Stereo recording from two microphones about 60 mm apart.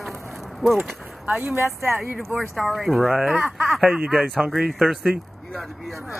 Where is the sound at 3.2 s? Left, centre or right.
Right.